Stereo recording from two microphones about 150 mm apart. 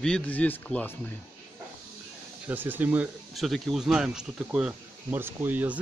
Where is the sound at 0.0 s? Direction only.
5° left (ahead or behind).